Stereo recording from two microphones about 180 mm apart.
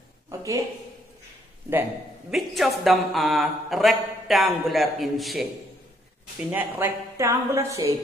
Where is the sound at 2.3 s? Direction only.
Centre (ahead or behind).